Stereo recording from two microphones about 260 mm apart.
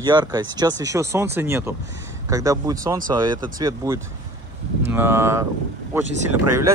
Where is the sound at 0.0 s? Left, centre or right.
Centre.